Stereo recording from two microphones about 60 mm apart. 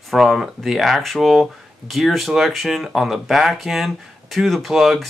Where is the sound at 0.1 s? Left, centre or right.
Centre.